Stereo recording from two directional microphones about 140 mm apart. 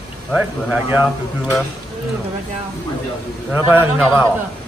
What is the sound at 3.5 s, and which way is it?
Speech, 10° right (ahead or behind).